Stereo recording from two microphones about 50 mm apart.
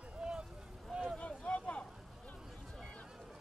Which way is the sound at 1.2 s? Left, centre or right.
Left.